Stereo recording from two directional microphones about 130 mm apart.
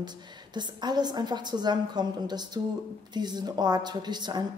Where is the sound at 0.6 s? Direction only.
35° right (ahead or behind).